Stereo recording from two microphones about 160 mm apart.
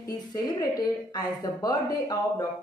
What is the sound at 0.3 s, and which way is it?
Speech, 25° left (ahead or behind).